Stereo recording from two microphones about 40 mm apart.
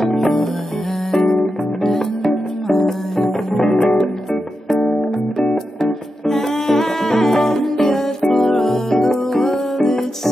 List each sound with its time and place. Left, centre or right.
0.0 s music: centre
5.9 s music: centre